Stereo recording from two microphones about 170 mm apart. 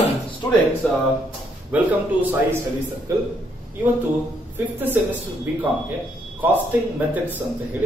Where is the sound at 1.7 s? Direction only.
10° right (ahead or behind).